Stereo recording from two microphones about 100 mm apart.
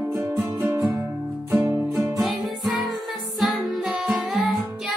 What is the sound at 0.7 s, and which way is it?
Music, 15° right (ahead or behind).